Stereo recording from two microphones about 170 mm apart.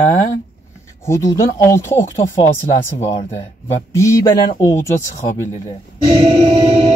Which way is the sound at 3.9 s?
20° left (ahead or behind).